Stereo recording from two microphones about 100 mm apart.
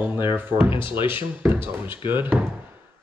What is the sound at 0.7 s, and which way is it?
Speech, 55° left (ahead or behind).